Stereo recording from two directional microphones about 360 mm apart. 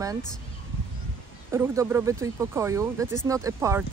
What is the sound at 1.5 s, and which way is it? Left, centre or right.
Speech, centre.